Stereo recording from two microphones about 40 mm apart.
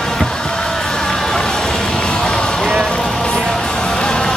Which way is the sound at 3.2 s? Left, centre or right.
Left.